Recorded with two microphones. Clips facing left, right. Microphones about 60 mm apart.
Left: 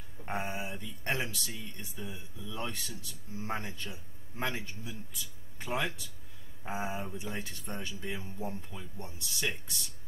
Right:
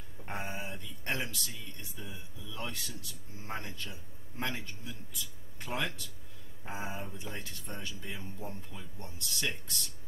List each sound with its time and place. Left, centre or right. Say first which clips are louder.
0.2 s a sound: left 3 dB; centre
1.8 s music: left 3 dB; centre
2.5 s a man's voice: left 2 dB; centre